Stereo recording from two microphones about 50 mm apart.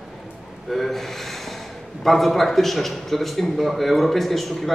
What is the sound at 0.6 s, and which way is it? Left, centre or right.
A man's voice, centre.